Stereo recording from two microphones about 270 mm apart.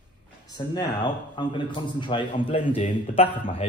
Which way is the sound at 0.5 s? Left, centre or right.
Centre.